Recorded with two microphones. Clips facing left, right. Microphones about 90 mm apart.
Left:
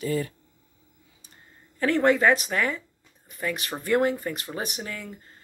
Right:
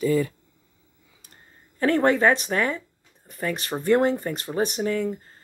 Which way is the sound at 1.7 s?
35° right (ahead or behind).